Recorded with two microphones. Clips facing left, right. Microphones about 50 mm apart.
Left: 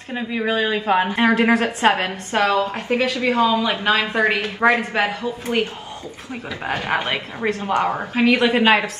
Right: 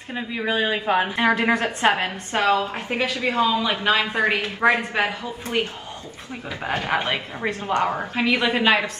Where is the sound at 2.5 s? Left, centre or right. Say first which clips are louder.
Left 1 dB; centre.